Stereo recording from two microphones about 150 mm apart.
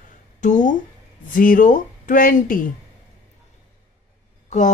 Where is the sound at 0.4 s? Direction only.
55° left (ahead or behind).